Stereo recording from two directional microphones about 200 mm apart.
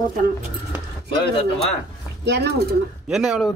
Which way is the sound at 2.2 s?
55° right (ahead or behind).